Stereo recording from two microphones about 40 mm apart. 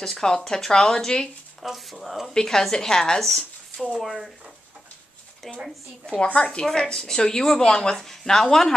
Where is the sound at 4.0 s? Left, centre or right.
Centre.